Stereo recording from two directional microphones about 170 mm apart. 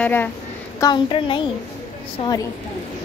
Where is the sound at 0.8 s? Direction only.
25° left (ahead or behind).